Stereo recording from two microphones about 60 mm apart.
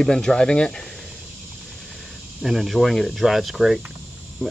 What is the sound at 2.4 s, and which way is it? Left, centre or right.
Speech, centre.